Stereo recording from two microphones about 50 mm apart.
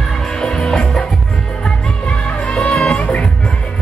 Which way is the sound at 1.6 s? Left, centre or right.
Left.